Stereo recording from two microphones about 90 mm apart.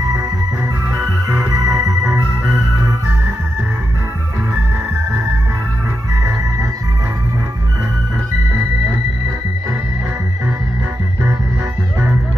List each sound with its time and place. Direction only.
0.9 s music: 35° right (ahead or behind)